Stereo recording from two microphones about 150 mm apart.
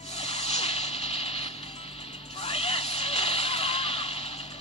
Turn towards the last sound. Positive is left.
turn(degrees=45)  # may be behind; listen again after turning